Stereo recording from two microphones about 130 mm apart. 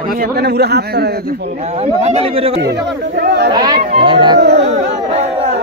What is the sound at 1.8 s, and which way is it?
Speech, 55° right (ahead or behind).